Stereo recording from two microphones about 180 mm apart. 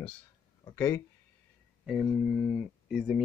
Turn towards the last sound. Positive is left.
turn(degrees=-5)  # may be behind; listen again after turning